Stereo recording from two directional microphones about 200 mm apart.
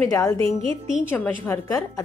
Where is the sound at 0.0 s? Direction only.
15° left (ahead or behind).